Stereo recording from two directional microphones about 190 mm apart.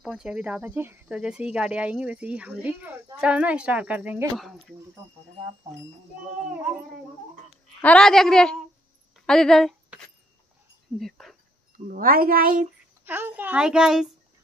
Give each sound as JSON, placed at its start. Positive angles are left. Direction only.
{"t": 0.0, "sound": "speech", "side_deg": -5}
{"t": 7.4, "sound": "a child's voice", "side_deg": 5}
{"t": 9.1, "sound": "a sound", "side_deg": 5}
{"t": 11.0, "sound": "speech", "side_deg": 0}
{"t": 11.9, "sound": "speech", "side_deg": -50}
{"t": 13.0, "sound": "a woman's voice", "side_deg": -10}